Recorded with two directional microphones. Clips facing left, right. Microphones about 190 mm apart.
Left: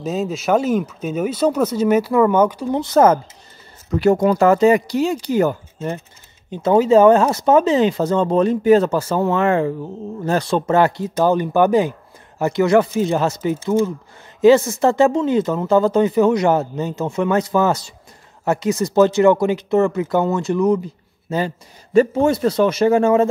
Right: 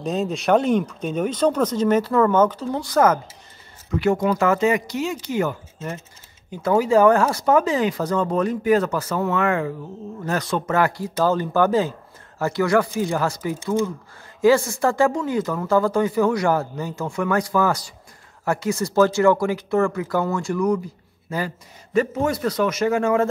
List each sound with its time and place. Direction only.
0.0 s speech: centre (ahead or behind)
2.8 s speech: 25° left (ahead or behind)
3.9 s speech: 35° left (ahead or behind)